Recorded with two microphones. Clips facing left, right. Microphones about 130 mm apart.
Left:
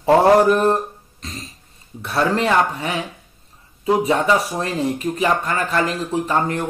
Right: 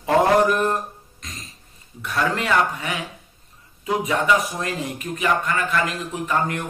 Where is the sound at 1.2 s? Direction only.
30° left (ahead or behind).